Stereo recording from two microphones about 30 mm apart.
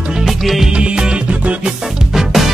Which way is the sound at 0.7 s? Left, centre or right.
Right.